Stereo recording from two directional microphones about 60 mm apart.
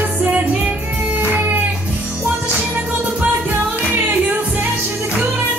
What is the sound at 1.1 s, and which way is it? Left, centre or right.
Music, right.